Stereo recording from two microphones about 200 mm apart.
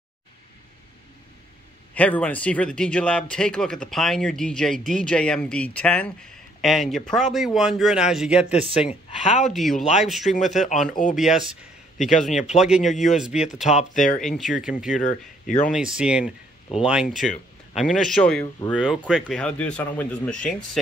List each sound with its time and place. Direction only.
2.0 s speech: 5° left (ahead or behind)
8.8 s speech: 35° left (ahead or behind)
9.5 s speech: centre (ahead or behind)
10.6 s speech: 40° left (ahead or behind)
11.1 s speech: centre (ahead or behind)
13.7 s speech: 40° left (ahead or behind)
14.2 s speech: centre (ahead or behind)
15.4 s speech: 40° left (ahead or behind)
15.7 s speech: 5° right (ahead or behind)